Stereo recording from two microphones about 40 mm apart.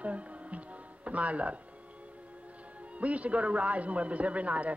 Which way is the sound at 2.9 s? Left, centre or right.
Right.